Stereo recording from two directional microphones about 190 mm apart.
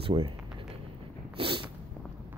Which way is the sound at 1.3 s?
25° right (ahead or behind).